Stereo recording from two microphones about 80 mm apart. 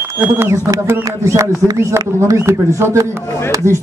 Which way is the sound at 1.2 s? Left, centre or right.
Right.